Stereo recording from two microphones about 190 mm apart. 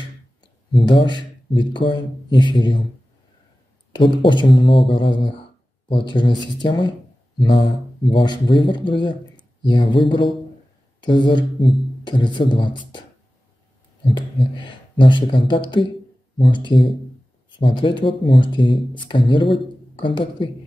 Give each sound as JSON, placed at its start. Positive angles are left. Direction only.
{"t": 0.4, "sound": "speech", "side_deg": 25}
{"t": 3.9, "sound": "speech", "side_deg": 25}
{"t": 14.0, "sound": "speech", "side_deg": 25}